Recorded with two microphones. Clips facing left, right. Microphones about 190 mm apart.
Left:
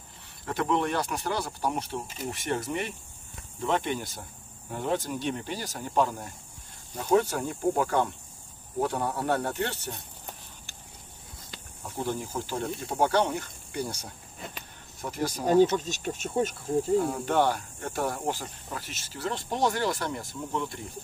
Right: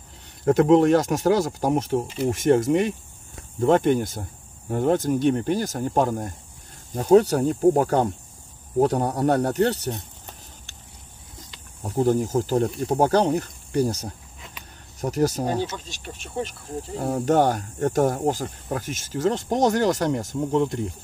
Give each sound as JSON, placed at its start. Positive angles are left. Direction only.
{"t": 0.5, "sound": "speech", "side_deg": -45}
{"t": 11.8, "sound": "speech", "side_deg": -45}
{"t": 15.5, "sound": "speech", "side_deg": 50}
{"t": 17.0, "sound": "speech", "side_deg": -45}